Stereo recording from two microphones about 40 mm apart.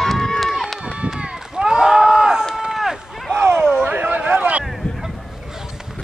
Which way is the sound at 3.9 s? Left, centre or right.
Right.